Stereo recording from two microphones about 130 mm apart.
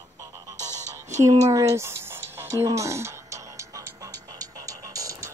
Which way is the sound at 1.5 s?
25° right (ahead or behind).